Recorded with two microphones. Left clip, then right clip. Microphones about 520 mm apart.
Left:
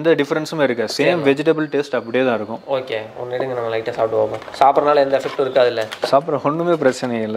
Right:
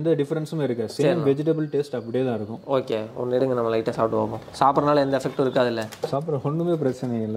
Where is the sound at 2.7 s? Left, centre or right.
Left.